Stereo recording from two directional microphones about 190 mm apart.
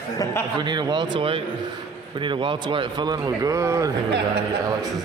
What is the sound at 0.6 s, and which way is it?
Speech, 25° right (ahead or behind).